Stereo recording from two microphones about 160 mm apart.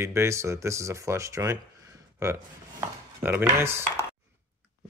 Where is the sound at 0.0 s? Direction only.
15° right (ahead or behind).